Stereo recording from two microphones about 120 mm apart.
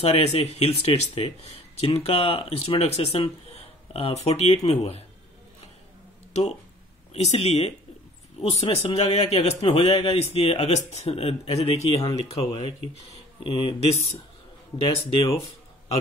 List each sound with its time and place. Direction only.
0.0 s a man's voice: 60° left (ahead or behind)
7.2 s a man's voice: 60° left (ahead or behind)
14.8 s speech: 40° left (ahead or behind)